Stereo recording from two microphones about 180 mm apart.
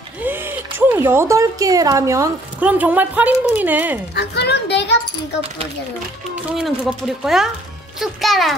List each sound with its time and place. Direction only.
0.2 s speech: 10° right (ahead or behind)
4.1 s a child's voice: 65° left (ahead or behind)
6.5 s speech: 5° right (ahead or behind)